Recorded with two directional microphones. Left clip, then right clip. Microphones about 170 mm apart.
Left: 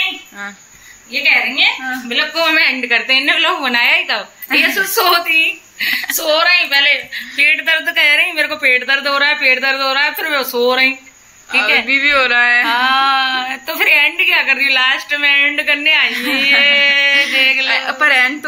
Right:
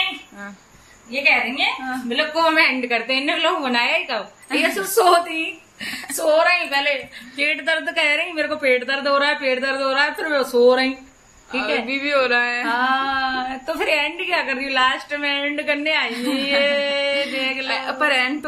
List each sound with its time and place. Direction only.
1.2 s a woman's voice: 65° right (ahead or behind)
2.0 s a sound: 30° right (ahead or behind)
2.8 s a woman's voice: 5° left (ahead or behind)
4.6 s speech: 20° right (ahead or behind)
5.3 s speech: 40° right (ahead or behind); by 11.0 s 25° right (ahead or behind)
11.9 s a woman's voice: centre (ahead or behind)
12.6 s speech: 25° right (ahead or behind)
16.1 s a woman's voice: centre (ahead or behind)
16.4 s a sound: 35° right (ahead or behind)
17.6 s a woman's voice: centre (ahead or behind)